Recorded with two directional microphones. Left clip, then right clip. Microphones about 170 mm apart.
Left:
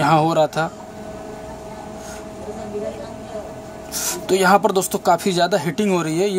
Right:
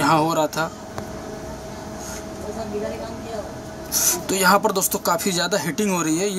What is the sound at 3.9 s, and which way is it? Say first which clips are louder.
Speech: left 2 dB; 55° left (ahead or behind).